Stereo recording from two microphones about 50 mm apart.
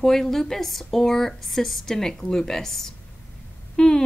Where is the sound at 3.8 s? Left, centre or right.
Centre.